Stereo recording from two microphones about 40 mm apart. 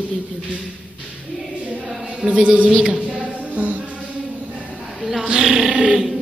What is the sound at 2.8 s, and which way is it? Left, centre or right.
Speech, centre.